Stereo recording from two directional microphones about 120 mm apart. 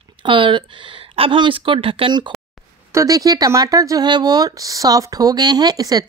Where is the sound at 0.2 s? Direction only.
40° right (ahead or behind).